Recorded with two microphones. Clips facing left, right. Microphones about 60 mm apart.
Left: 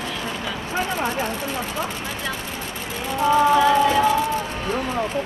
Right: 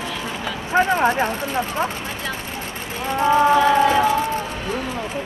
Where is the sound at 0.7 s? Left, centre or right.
Right.